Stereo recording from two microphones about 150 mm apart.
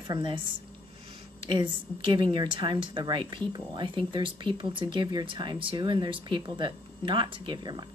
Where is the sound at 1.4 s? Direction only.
30° right (ahead or behind).